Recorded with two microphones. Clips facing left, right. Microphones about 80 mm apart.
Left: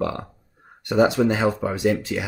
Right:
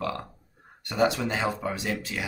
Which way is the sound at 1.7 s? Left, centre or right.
Centre.